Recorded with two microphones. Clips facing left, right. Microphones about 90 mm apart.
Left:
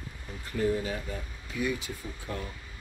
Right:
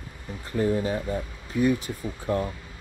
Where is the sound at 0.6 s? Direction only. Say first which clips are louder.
Right 4 dB; 35° right (ahead or behind).